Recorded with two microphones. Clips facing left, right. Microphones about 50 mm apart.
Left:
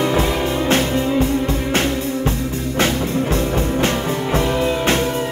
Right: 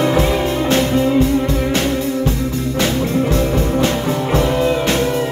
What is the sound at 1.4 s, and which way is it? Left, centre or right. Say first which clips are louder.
Music: right 2 dB; left.